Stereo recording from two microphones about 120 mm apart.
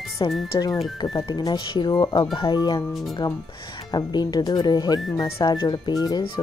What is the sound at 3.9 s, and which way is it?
Speech, 35° left (ahead or behind).